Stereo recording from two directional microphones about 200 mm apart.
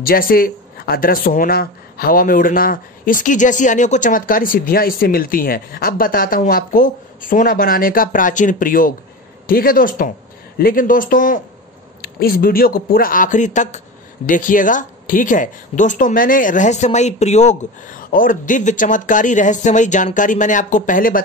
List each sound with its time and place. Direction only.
0.0 s speech: 45° left (ahead or behind)